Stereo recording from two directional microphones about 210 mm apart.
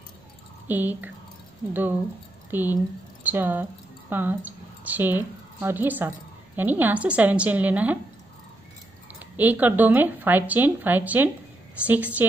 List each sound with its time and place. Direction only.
0.7 s a woman's voice: 10° right (ahead or behind)
9.2 s speech: 10° right (ahead or behind)